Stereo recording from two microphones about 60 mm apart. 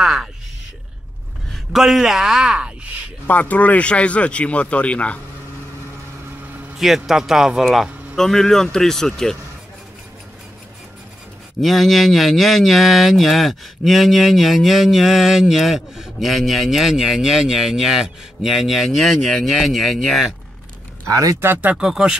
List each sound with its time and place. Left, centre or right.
0.0 s a sound: centre
1.5 s speech: centre
3.3 s speech: left
6.8 s speech: centre
8.2 s speech: centre
11.6 s speech: centre
21.1 s speech: right
21.4 s speech: right
21.7 s speech: centre